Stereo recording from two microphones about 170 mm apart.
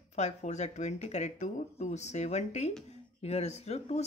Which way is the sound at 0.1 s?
40° left (ahead or behind).